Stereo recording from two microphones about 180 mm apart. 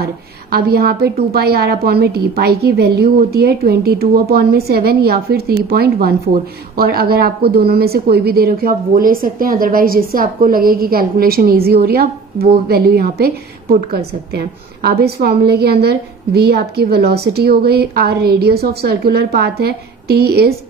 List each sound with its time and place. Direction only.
0.0 s a woman's voice: 60° right (ahead or behind)